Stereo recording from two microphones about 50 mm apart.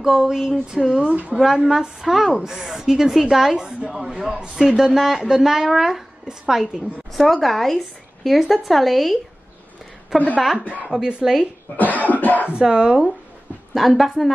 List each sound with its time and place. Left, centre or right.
0.0 s a woman's voice: centre
1.0 s speech: right
1.4 s a woman's voice: centre
7.2 s speech: centre
10.1 s a woman's voice: left
10.9 s a woman's voice: centre
11.7 s cough: left
12.4 s a woman's voice: centre
13.7 s speech: centre